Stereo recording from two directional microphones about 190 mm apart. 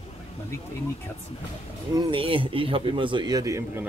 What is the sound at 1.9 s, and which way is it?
A man's voice, 25° right (ahead or behind).